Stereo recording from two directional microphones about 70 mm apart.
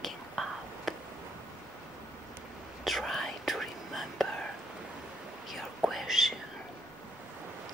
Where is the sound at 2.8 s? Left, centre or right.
Centre.